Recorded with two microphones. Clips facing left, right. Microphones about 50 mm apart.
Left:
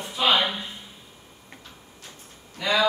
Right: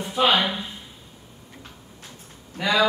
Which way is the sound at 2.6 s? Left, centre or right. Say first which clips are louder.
Right 2 dB; right.